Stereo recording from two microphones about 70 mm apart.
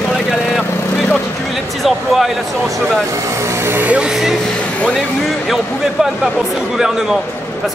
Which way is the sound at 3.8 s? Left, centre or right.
Centre.